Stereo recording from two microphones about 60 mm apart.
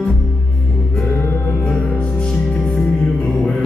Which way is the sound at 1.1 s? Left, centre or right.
Left.